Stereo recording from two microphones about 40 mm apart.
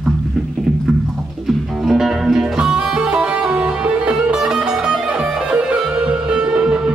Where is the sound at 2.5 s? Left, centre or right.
Right.